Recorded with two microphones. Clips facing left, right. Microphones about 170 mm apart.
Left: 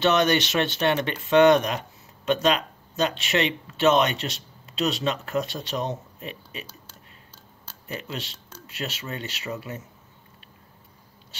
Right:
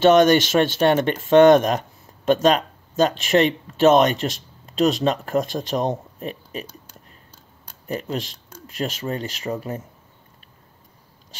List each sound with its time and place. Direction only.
0.0 s speech: 45° right (ahead or behind)
7.9 s speech: 45° right (ahead or behind)